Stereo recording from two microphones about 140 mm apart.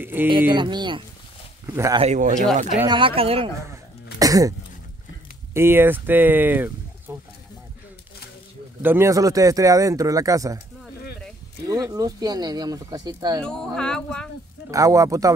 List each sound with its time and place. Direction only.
0.0 s speech: 15° right (ahead or behind)
0.6 s speech: 35° right (ahead or behind)
1.7 s speech: 20° right (ahead or behind)
2.1 s speech: 60° right (ahead or behind)
2.9 s speech: 40° right (ahead or behind)
3.7 s throat clearing: 25° right (ahead or behind)
5.5 s speech: 15° right (ahead or behind)
8.8 s speech: 20° right (ahead or behind)
11.6 s speech: 25° right (ahead or behind)
13.4 s speech: 5° left (ahead or behind)
14.7 s speech: 25° right (ahead or behind)